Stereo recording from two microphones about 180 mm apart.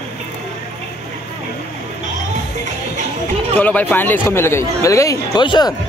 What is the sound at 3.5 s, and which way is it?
Speech, 10° left (ahead or behind).